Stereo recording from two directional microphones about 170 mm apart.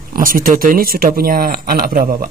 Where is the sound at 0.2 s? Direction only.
55° right (ahead or behind).